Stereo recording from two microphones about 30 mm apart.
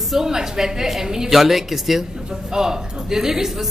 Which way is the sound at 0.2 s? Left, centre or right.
Centre.